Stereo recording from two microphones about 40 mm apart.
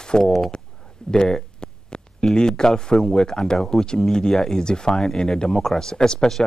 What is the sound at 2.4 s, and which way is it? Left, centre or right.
Speech, centre.